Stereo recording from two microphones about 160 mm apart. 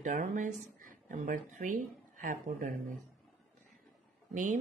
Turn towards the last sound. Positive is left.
turn(degrees=-55)  # may be behind; listen again after turning